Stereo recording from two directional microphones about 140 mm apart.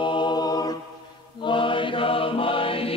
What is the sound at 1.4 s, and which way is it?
Chant, 35° left (ahead or behind).